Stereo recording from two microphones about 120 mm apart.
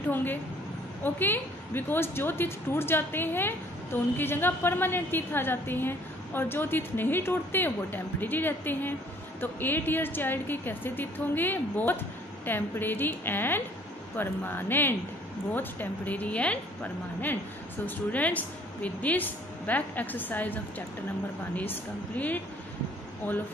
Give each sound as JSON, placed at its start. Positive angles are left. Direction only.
{"t": 0.1, "sound": "a woman's voice", "side_deg": 15}